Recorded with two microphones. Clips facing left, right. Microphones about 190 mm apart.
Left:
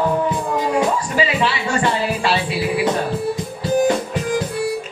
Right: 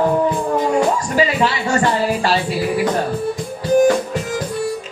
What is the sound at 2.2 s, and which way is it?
Music, 45° right (ahead or behind).